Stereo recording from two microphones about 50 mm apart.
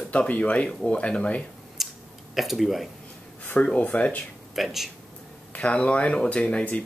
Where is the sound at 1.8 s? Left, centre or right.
Centre.